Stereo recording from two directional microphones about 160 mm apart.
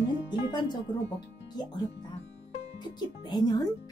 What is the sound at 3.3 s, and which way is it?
Speech, 25° left (ahead or behind).